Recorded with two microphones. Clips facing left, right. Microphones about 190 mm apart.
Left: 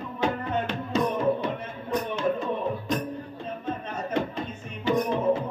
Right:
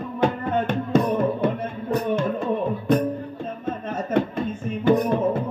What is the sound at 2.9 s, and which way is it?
Music, 55° right (ahead or behind).